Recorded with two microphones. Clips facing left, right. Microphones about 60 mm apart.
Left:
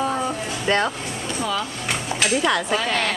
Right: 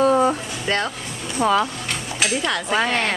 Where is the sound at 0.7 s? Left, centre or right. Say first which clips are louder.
Left 2 dB; centre.